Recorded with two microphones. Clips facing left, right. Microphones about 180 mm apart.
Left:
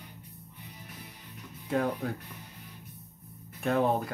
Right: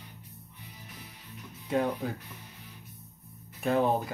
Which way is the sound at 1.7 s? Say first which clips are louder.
Right 1 dB; 5° right (ahead or behind).